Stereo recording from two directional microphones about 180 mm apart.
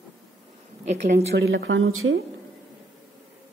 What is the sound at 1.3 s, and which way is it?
Speech, 80° right.